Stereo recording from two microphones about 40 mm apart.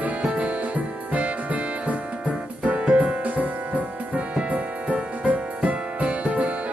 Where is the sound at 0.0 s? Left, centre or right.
Right.